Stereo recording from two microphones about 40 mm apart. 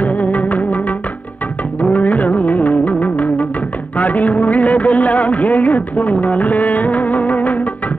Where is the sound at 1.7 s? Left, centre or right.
Left.